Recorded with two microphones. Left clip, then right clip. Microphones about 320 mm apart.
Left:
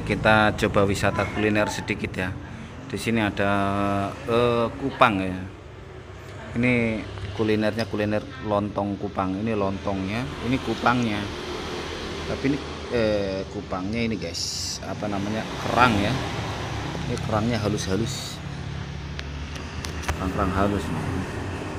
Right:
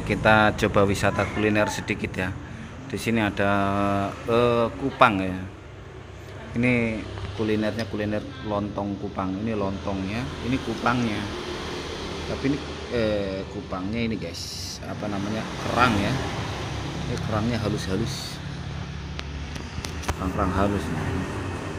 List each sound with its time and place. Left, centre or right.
0.0 s speech: centre
6.5 s speech: centre
7.4 s speech: centre
7.7 s speech: centre
8.0 s speech: centre
9.7 s speech: centre
20.1 s speech: centre